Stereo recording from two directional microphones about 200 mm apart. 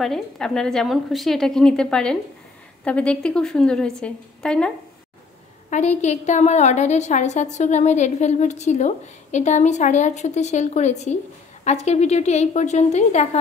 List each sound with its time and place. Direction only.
0.0 s a woman's voice: centre (ahead or behind)
5.7 s a woman's voice: 35° left (ahead or behind)